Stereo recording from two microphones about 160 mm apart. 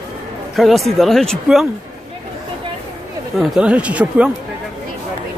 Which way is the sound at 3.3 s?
5° right (ahead or behind).